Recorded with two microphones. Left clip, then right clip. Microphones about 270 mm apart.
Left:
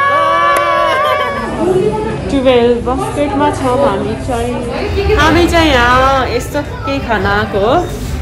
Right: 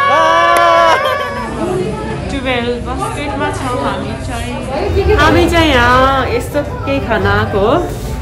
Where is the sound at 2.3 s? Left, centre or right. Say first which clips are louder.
Left 8 dB; centre.